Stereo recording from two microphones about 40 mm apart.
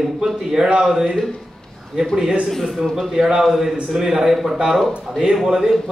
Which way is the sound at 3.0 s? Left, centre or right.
Centre.